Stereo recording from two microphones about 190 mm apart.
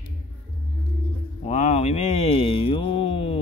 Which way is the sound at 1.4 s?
40° left (ahead or behind).